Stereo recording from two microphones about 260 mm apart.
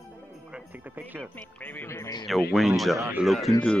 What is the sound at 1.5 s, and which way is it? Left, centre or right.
Speech, centre.